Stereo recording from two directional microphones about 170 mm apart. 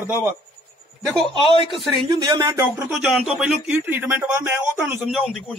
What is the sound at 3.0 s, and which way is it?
A man's voice, centre (ahead or behind).